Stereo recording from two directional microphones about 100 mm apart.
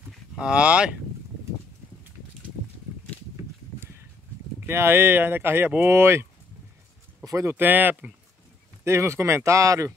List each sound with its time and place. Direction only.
0.4 s speech: 10° right (ahead or behind)
4.6 s speech: 25° right (ahead or behind)
7.2 s speech: 30° right (ahead or behind)
8.8 s speech: 30° right (ahead or behind)